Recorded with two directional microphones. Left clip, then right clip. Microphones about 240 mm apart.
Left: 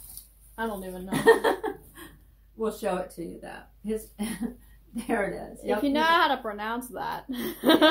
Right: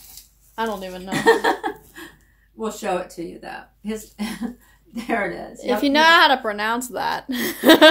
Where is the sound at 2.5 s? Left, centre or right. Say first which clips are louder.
Right 4 dB; centre.